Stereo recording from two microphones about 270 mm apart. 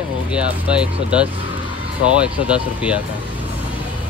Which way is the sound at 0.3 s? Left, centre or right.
Centre.